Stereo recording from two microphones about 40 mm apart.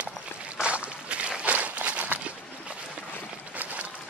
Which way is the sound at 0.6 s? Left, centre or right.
Right.